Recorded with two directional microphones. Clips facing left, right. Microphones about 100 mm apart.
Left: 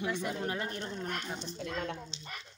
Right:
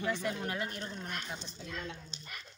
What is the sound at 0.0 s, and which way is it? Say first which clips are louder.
Speech: even; 15° left (ahead or behind).